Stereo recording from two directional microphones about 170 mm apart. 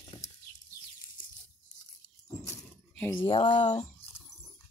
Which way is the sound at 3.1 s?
30° left (ahead or behind).